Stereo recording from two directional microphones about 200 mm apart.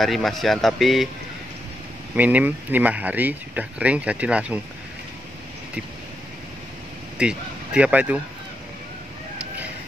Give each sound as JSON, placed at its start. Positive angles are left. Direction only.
{"t": 0.0, "sound": "a man's voice", "side_deg": 0}
{"t": 2.1, "sound": "speech", "side_deg": -10}
{"t": 7.2, "sound": "speech", "side_deg": -5}